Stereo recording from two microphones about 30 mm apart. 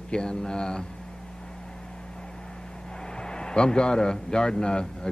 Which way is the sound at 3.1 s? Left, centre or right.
Left.